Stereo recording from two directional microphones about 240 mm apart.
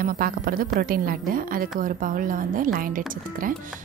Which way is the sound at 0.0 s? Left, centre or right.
Right.